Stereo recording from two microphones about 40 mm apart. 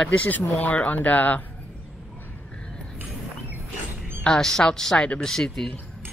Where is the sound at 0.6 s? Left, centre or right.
Left.